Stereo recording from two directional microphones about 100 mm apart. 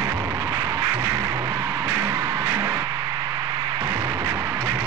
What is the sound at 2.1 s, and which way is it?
Music, 50° right (ahead or behind).